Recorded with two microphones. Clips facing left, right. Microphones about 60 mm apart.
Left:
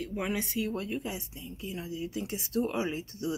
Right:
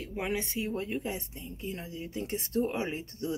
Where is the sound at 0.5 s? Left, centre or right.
Right.